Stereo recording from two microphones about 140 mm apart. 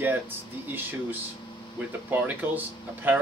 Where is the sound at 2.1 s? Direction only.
15° right (ahead or behind).